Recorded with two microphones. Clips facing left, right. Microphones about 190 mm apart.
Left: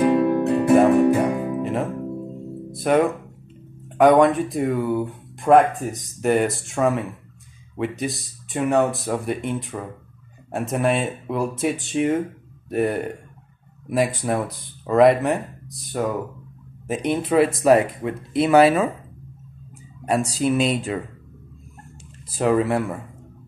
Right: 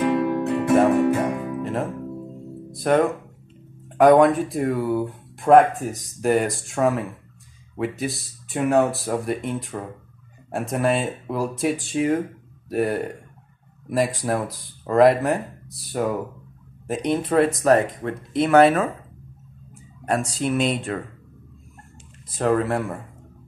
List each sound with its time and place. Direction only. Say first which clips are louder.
0.0 s music: left 3 dB; 30° left (ahead or behind)
0.9 s music: left 3 dB; 15° left (ahead or behind)
1.3 s music: left 3 dB; 25° left (ahead or behind)
1.6 s music: left 2 dB; centre (ahead or behind)
2.7 s speech: left 1 dB; 5° left (ahead or behind)
20.3 s speech: left 3 dB; 5° left (ahead or behind)
22.4 s speech: left 2 dB; 5° left (ahead or behind)